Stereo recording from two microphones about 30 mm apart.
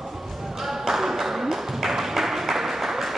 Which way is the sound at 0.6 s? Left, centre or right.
Centre.